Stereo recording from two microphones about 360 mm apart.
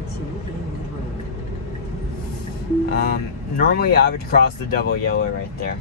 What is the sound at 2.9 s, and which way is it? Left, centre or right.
Speech, left.